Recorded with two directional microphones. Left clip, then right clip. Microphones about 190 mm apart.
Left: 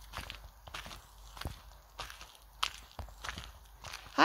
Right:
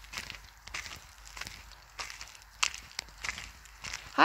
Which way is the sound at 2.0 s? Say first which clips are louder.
Right 4 dB; 15° right (ahead or behind).